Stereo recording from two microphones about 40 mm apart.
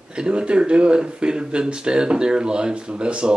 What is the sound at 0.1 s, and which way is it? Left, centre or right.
Speech, right.